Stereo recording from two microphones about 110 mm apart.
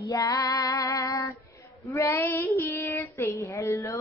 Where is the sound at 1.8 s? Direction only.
25° left (ahead or behind).